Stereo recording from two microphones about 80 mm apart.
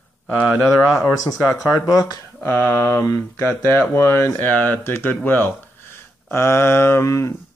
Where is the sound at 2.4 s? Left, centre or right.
Left.